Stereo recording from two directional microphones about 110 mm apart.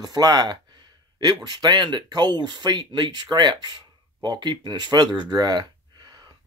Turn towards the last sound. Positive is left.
turn(degrees=-40)  # may be behind; listen again after turning